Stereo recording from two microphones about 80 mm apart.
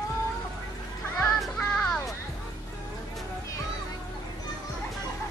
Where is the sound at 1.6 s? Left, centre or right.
Centre.